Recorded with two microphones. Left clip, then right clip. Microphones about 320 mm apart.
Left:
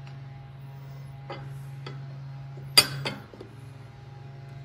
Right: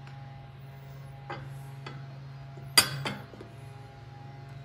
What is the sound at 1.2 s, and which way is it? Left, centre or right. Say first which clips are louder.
Music: even; centre.